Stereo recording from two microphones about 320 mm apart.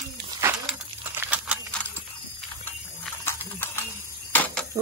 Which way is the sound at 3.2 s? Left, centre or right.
Centre.